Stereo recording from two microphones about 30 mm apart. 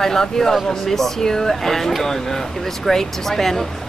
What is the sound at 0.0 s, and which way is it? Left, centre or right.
Speech, centre.